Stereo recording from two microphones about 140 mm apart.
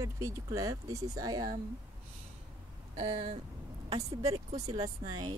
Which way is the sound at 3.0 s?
50° right (ahead or behind).